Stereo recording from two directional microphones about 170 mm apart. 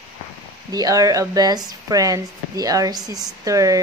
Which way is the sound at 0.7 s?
20° right (ahead or behind).